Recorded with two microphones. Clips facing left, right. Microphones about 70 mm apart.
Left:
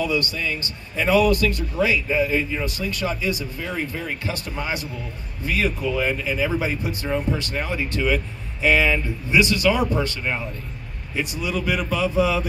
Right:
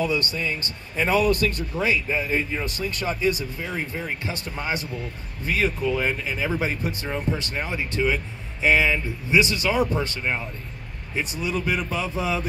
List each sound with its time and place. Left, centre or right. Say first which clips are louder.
0.0 s a man's voice: left 1 dB; right
11.1 s speech: left 1 dB; right